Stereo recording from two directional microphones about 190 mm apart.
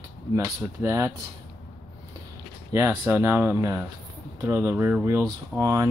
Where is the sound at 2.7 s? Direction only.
15° right (ahead or behind).